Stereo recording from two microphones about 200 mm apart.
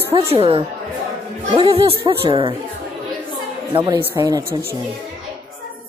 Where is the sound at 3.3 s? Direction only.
20° right (ahead or behind).